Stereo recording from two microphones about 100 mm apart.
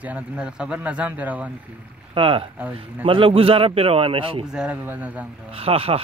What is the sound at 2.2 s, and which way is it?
Speech, 65° right (ahead or behind).